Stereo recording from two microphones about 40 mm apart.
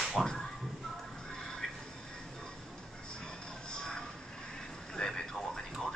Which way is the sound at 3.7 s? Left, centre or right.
Centre.